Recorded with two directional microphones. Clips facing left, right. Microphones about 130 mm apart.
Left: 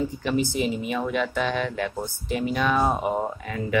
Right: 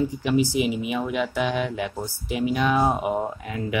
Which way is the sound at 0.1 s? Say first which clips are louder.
Right 3 dB; 10° right (ahead or behind).